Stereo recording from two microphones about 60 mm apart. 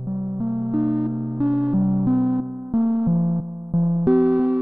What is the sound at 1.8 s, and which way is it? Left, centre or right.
Music, right.